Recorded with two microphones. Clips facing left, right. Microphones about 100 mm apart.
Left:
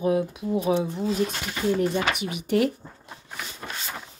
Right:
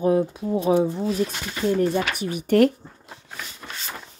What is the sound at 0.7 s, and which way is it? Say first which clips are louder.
Speech: right 4 dB; 5° right (ahead or behind).